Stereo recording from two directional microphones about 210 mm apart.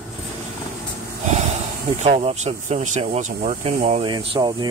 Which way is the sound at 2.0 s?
30° right (ahead or behind).